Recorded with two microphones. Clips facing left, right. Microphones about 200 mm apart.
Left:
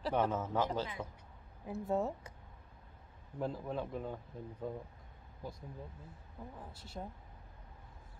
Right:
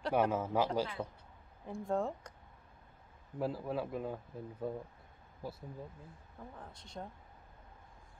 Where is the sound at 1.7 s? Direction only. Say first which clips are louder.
Even; 5° left (ahead or behind).